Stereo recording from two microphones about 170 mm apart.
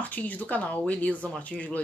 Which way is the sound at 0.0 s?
10° left (ahead or behind).